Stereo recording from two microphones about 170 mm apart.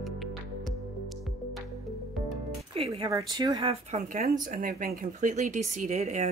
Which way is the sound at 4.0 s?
60° right (ahead or behind).